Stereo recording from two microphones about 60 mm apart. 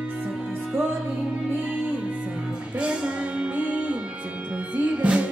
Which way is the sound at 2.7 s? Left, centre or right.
Centre.